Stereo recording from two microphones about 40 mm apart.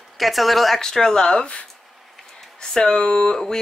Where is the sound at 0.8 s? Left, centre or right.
Centre.